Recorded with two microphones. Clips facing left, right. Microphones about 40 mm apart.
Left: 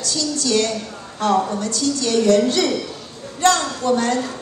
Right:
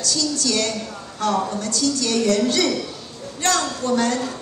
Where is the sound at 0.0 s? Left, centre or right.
Left.